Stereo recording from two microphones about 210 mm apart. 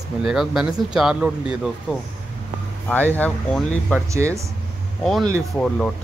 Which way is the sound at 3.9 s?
15° right (ahead or behind).